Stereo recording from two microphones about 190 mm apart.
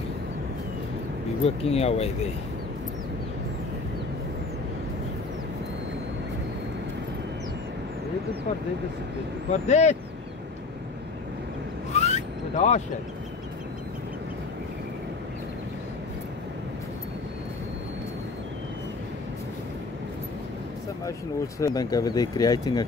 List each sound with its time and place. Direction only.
1.4 s speech: 30° left (ahead or behind)
9.5 s speech: 35° left (ahead or behind)
11.9 s vehicle: 35° left (ahead or behind)
21.5 s speech: 20° left (ahead or behind)